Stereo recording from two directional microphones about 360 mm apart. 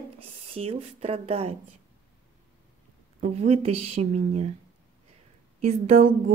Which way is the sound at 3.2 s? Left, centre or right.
Centre.